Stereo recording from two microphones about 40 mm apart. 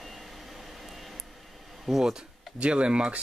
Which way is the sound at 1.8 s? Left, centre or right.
Centre.